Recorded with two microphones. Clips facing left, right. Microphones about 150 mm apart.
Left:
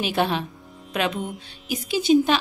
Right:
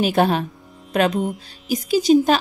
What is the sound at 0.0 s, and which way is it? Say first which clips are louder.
A woman's voice: right 5 dB; 45° right (ahead or behind).